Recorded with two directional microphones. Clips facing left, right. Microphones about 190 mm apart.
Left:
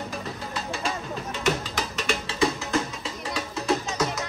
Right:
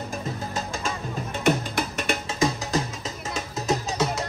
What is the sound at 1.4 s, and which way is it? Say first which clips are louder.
Music: right 4 dB; 50° right (ahead or behind).